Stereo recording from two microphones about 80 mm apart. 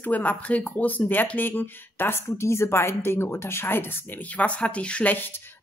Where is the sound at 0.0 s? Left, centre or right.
Left.